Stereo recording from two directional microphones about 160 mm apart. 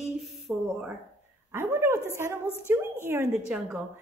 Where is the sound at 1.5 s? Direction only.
15° right (ahead or behind).